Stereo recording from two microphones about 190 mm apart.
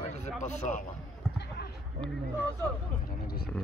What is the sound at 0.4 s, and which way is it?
Speech, 40° left (ahead or behind).